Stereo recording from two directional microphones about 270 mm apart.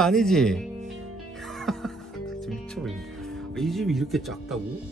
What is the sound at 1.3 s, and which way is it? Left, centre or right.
Music, centre.